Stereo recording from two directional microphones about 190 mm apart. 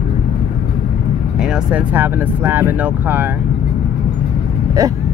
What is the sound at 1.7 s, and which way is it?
Speech, 10° right (ahead or behind).